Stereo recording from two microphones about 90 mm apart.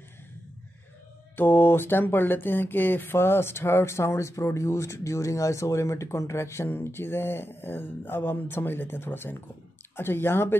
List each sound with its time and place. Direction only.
1.3 s speech: 25° left (ahead or behind)